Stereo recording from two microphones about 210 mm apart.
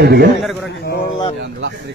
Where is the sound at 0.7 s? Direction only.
50° left (ahead or behind).